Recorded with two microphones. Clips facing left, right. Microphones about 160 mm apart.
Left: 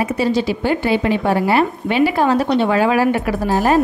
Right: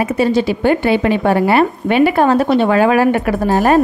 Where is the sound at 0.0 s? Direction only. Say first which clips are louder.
Right 3 dB; 55° right (ahead or behind).